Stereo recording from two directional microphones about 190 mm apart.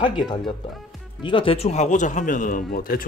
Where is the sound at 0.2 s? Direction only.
25° left (ahead or behind).